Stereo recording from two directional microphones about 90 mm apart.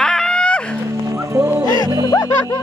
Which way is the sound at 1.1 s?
25° right (ahead or behind).